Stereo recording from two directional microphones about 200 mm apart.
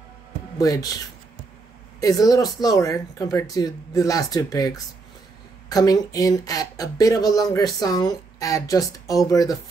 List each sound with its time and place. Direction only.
0.6 s speech: 15° left (ahead or behind)
2.0 s speech: 20° left (ahead or behind)